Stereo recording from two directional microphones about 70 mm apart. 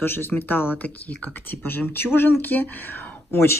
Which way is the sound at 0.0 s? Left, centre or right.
Left.